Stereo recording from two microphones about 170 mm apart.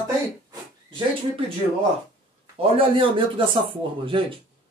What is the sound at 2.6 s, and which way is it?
Speech, 30° right (ahead or behind).